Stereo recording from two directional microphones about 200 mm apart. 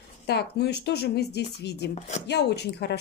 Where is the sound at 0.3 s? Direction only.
55° left (ahead or behind).